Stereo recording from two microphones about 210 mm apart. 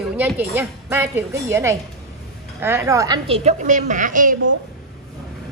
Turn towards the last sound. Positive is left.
turn(degrees=-40)  # may be behind; listen again after turning